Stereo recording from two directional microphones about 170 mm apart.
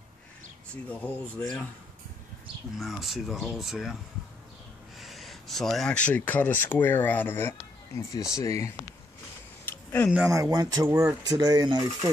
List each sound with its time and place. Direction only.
0.8 s speech: 10° left (ahead or behind)
2.8 s speech: centre (ahead or behind)
5.0 s speech: centre (ahead or behind); by 8.7 s 15° left (ahead or behind)
9.8 s speech: 10° left (ahead or behind)
10.1 s speech: 20° right (ahead or behind)